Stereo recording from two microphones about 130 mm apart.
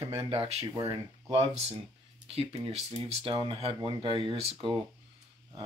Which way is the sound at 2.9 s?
45° right (ahead or behind).